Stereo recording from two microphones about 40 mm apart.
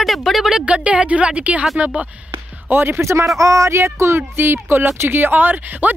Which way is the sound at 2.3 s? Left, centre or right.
Right.